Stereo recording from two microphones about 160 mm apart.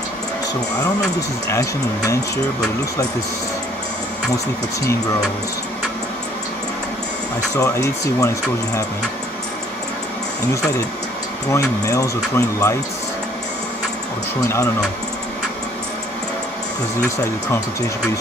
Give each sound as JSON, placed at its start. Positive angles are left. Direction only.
{"t": 1.5, "sound": "speech", "side_deg": 20}
{"t": 7.5, "sound": "speech", "side_deg": 20}
{"t": 11.5, "sound": "speech", "side_deg": 20}